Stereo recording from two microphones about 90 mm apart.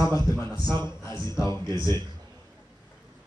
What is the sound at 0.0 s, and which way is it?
A man's voice, 40° left (ahead or behind).